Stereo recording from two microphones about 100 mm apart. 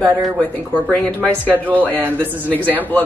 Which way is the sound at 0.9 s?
15° left (ahead or behind).